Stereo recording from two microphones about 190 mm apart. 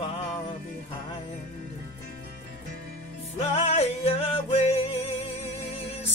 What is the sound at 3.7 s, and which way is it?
Music, 35° left (ahead or behind).